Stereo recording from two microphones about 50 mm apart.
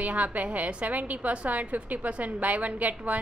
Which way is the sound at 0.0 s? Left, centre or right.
Right.